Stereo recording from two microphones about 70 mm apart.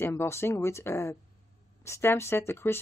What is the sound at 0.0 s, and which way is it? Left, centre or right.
A woman's voice, left.